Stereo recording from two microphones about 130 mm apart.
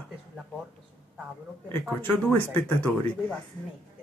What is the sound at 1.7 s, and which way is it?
Speech, 15° left (ahead or behind).